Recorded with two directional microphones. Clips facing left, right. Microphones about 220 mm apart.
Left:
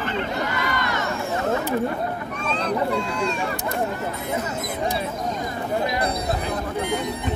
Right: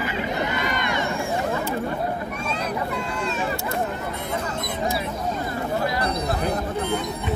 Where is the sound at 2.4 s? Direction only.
10° right (ahead or behind).